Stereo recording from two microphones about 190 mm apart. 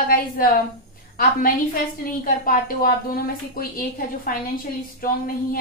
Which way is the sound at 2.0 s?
50° left (ahead or behind).